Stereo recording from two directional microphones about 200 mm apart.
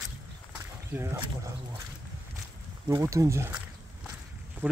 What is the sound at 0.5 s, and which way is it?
Speech, 15° right (ahead or behind).